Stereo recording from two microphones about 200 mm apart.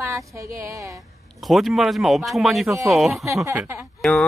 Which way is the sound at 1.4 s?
Centre (ahead or behind).